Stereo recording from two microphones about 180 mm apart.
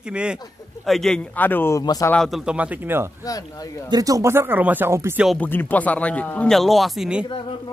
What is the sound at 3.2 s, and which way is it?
Speech, 20° left (ahead or behind).